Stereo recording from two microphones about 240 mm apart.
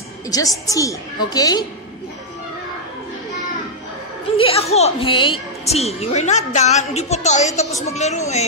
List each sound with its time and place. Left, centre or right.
0.3 s a woman's voice: centre
4.4 s a woman's voice: left